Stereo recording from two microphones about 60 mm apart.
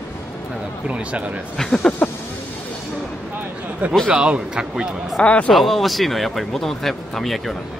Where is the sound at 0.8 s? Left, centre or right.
Right.